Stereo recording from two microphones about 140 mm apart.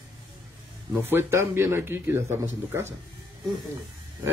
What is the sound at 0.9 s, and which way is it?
Speech, 20° right (ahead or behind).